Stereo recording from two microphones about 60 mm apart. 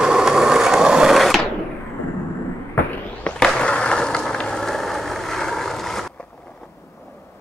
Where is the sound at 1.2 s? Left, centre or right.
Centre.